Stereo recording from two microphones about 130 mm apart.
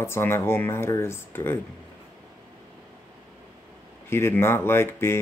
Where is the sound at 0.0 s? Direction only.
20° left (ahead or behind).